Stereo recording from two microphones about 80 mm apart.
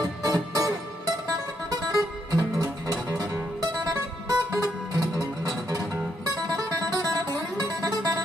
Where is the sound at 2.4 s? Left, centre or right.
Right.